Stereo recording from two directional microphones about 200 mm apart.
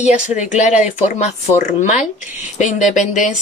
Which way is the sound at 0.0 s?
35° left (ahead or behind).